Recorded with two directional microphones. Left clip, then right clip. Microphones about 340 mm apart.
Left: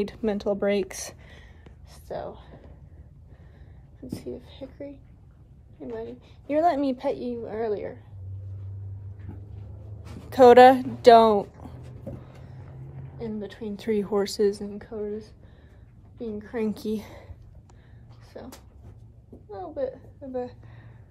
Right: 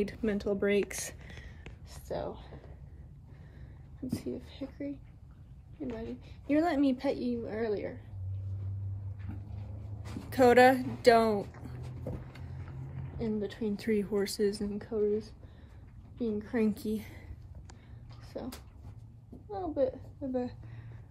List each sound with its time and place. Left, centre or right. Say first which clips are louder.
0.0 s a woman's voice: left 6 dB; left
1.9 s speech: left 3 dB; centre
4.1 s a woman's voice: left 3 dB; centre
5.9 s a woman's voice: left 6 dB; centre
10.3 s a woman's voice: left 9 dB; left
13.2 s a woman's voice: even; centre
16.7 s a woman's voice: left 6 dB; centre
18.3 s speech: right 1 dB; centre
19.5 s a woman's voice: even; centre